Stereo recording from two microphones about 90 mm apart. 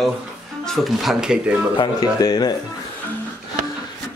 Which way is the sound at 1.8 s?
45° left (ahead or behind).